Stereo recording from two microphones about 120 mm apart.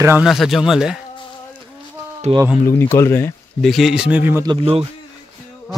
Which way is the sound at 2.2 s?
65° right (ahead or behind).